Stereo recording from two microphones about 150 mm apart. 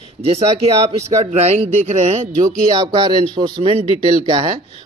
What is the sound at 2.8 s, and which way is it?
Speech, 25° right (ahead or behind).